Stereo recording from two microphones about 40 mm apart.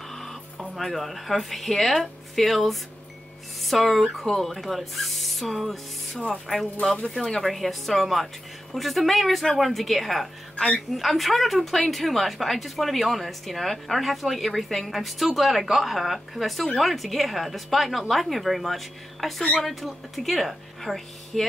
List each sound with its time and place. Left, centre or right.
0.1 s a sound: centre
0.6 s speech: centre
10.5 s music: left
10.9 s speech: centre